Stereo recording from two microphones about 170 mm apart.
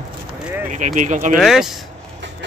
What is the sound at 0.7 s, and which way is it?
Speech, 45° right (ahead or behind).